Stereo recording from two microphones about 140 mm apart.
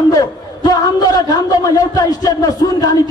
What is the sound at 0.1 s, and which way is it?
A man's voice, 25° left (ahead or behind).